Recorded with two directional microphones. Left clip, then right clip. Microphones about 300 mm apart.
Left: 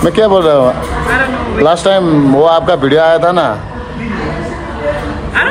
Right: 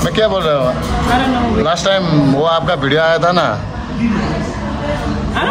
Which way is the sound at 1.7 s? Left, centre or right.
Centre.